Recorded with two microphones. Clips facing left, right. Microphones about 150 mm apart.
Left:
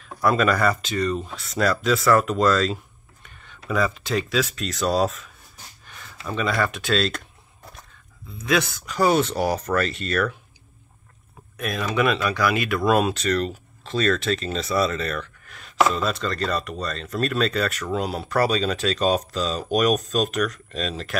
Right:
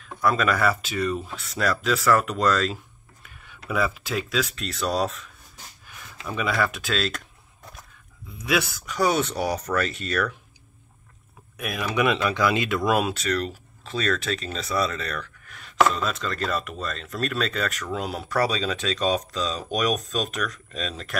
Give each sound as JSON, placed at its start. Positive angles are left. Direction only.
{"t": 0.0, "sound": "speech", "side_deg": 0}
{"t": 5.9, "sound": "speech", "side_deg": -10}
{"t": 8.4, "sound": "speech", "side_deg": -10}
{"t": 11.5, "sound": "speech", "side_deg": -10}
{"t": 12.9, "sound": "speech", "side_deg": -5}